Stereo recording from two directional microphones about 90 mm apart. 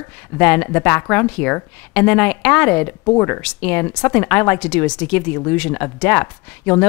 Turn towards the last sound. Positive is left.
turn(degrees=20)  # may be behind; listen again after turning